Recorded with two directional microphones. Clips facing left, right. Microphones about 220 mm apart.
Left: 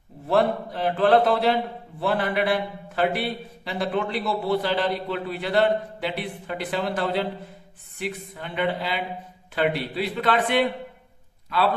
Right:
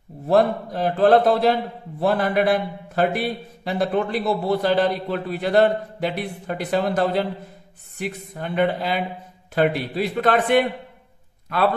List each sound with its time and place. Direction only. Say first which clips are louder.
0.3 s a man's voice: right 3 dB; 40° right (ahead or behind)